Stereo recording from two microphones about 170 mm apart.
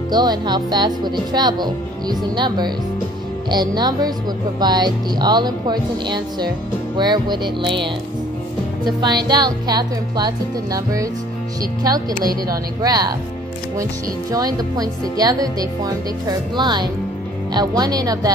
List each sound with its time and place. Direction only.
0.1 s speech: 25° right (ahead or behind)
12.8 s speech: 25° right (ahead or behind)
14.3 s speech: 20° right (ahead or behind)